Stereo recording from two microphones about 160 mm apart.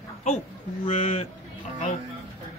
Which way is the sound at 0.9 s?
40° left (ahead or behind).